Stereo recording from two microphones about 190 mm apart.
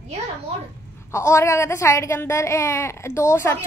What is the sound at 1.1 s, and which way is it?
A woman's voice, 15° left (ahead or behind).